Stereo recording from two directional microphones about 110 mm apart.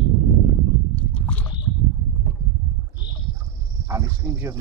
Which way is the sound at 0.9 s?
10° left (ahead or behind).